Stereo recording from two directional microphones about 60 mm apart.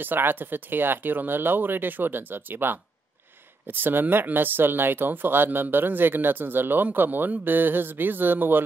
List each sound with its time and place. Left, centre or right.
0.0 s speech: right